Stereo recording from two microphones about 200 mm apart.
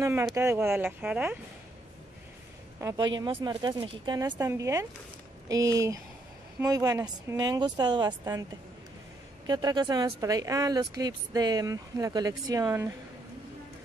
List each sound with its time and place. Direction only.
0.0 s speech: 15° right (ahead or behind)
2.8 s speech: 15° right (ahead or behind)
9.5 s speech: 20° right (ahead or behind)